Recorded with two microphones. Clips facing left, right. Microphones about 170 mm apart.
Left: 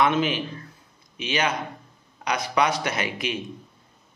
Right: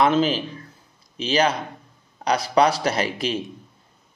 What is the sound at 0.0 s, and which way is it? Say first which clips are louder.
A man's voice: right 3 dB; 35° right (ahead or behind).